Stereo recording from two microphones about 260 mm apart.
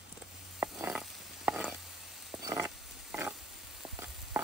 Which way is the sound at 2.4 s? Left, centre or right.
Centre.